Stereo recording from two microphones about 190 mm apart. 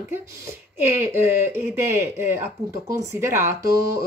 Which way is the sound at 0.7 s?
10° right (ahead or behind).